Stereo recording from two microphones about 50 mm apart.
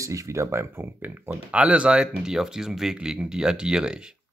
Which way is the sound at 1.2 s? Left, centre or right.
Right.